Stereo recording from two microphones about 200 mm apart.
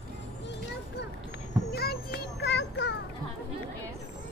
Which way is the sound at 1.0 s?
55° left (ahead or behind).